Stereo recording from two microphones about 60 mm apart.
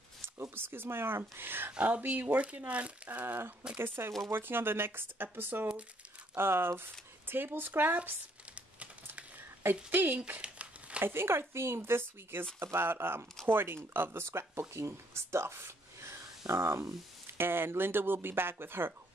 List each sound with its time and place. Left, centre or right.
0.4 s speech: right
1.7 s speech: right
6.3 s a sound: right
9.8 s crumpling: right
11.1 s a woman's voice: right